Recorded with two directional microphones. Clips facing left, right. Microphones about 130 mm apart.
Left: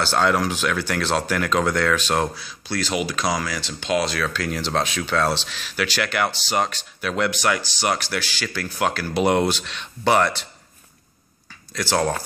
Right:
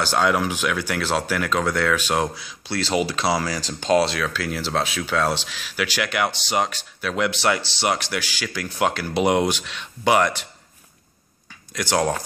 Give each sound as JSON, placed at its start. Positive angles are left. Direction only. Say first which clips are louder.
{"t": 0.0, "sound": "speech", "louder": "even", "side_deg": -10}
{"t": 4.2, "sound": "speech", "louder": "left 1 dB", "side_deg": -5}
{"t": 11.7, "sound": "speech", "louder": "even", "side_deg": -15}